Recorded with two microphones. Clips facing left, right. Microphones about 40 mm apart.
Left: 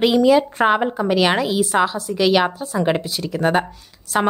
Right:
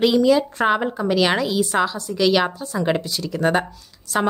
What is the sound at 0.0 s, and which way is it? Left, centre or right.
A woman's voice, centre.